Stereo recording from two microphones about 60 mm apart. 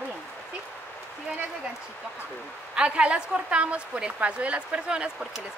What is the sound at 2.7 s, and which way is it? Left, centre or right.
Speech, centre.